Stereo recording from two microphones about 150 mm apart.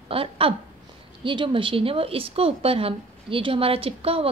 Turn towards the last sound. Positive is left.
turn(degrees=-40)  # may be behind; listen again after turning